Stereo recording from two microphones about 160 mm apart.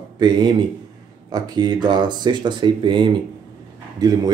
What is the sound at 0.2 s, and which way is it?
Speech, 30° right (ahead or behind).